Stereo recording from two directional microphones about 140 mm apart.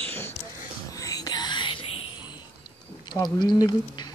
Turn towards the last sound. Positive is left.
turn(degrees=30)  # may be behind; listen again after turning